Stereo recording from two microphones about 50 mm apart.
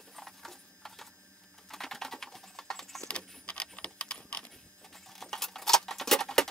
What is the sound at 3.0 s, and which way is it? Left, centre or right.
Keys jangling, left.